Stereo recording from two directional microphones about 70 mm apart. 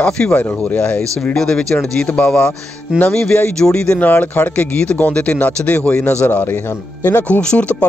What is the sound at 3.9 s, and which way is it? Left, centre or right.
A man's voice, left.